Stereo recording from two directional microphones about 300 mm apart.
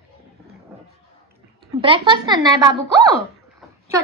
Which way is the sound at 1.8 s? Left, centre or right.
Centre.